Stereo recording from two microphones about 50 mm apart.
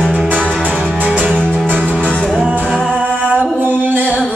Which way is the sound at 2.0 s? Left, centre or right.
Left.